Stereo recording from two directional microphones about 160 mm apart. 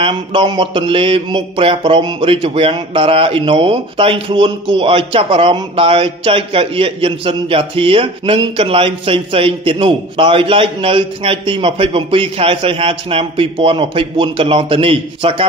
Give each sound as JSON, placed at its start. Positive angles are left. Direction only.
{"t": 0.0, "sound": "mantra", "side_deg": -30}